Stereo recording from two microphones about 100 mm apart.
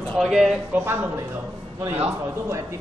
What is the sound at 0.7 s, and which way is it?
Speech, 20° right (ahead or behind).